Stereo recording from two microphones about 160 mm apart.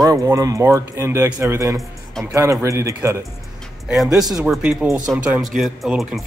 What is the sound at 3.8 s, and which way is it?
Speech, 5° right (ahead or behind).